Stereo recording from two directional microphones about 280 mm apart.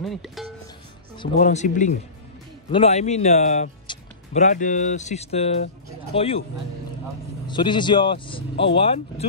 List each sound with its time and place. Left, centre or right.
0.0 s speech: centre
1.3 s speech: left
7.4 s speech: centre